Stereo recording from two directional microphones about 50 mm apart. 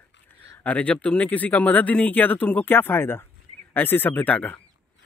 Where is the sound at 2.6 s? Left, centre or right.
Left.